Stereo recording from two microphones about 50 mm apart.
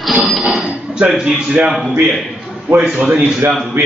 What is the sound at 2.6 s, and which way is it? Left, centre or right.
Speech, right.